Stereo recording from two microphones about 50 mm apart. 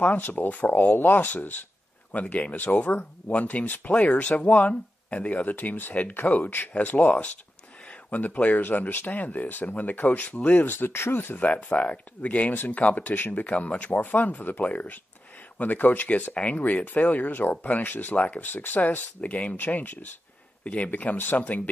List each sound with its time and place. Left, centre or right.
0.0 s speech: left
3.3 s speech: left
8.1 s speech: left
10.7 s speech: left
11.3 s speech: left
18.1 s speech: left